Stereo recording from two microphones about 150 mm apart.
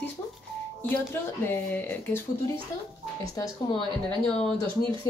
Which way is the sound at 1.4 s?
10° left (ahead or behind).